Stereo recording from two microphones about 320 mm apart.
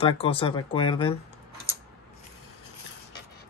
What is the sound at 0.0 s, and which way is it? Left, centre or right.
Speech, centre.